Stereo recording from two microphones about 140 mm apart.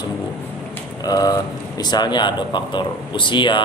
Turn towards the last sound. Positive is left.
turn(degrees=35)  # may be behind; listen again after turning